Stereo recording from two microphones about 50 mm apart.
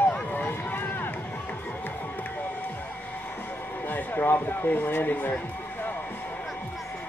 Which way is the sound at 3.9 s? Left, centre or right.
Left.